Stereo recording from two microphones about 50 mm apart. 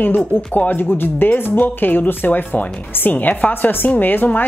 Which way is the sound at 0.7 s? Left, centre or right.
Left.